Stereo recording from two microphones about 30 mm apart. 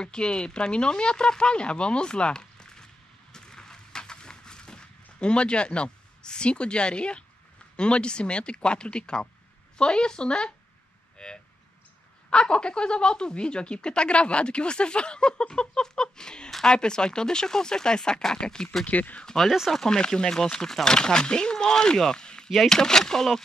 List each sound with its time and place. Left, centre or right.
0.0 s speech: left
3.3 s a sound: left
7.7 s speech: left
12.4 s speech: left
18.9 s speech: left
19.3 s speech: left